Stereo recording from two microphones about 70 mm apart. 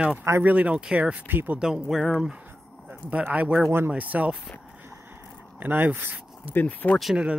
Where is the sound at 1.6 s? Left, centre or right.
Centre.